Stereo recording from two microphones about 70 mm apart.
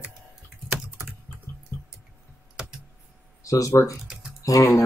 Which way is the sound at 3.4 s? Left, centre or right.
Left.